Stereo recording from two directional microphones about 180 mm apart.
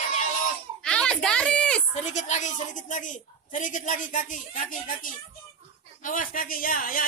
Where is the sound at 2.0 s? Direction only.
40° left (ahead or behind).